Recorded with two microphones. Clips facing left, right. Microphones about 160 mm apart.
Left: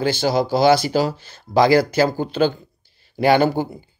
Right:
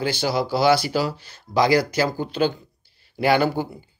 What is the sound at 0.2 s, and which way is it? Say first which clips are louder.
Speech: left 4 dB; 45° left (ahead or behind).